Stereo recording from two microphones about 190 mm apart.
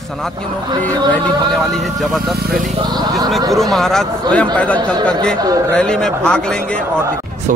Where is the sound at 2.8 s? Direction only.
20° right (ahead or behind).